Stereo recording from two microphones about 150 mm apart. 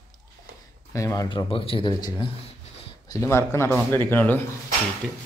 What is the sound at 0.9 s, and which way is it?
Speech, 20° left (ahead or behind).